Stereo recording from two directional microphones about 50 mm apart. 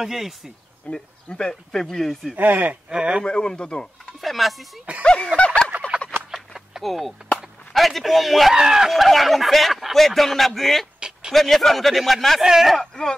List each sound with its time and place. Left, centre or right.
0.0 s a man's voice: centre
0.9 s speech: centre
2.3 s speech: right
2.9 s speech: centre
3.3 s speech: centre
4.2 s a man's voice: centre
5.0 s a sound: centre
6.3 s a sound: centre
7.7 s a man's voice: centre
11.0 s a sound: centre
11.3 s a man's voice: centre
12.7 s speech: centre